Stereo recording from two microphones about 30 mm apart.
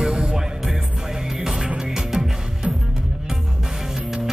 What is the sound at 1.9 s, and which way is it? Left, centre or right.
Music, centre.